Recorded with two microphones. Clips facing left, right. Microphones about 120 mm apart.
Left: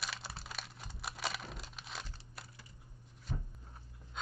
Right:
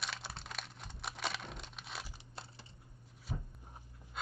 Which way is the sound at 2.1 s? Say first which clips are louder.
Right 2 dB; 25° right (ahead or behind).